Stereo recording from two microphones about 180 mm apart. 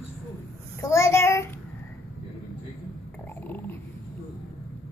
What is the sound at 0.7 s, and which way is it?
Child singing, 15° left (ahead or behind).